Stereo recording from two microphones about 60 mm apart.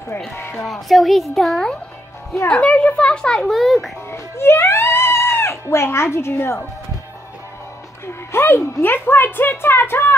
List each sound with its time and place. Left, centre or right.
0.5 s speech: centre
2.5 s speech: centre
3.3 s speech: centre
4.1 s speech: left
8.1 s a woman's voice: left